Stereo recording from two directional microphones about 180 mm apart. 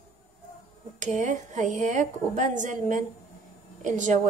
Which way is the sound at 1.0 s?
40° right (ahead or behind).